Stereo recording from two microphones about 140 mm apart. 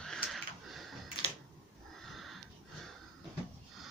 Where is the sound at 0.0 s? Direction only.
Centre (ahead or behind).